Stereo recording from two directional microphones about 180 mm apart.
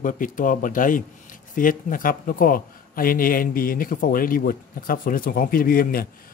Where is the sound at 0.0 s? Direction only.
50° left (ahead or behind).